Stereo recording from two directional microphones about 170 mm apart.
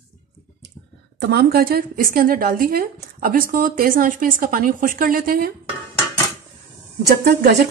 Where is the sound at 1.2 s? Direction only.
75° right (ahead or behind).